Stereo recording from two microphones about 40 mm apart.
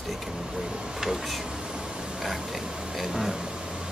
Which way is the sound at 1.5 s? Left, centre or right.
Right.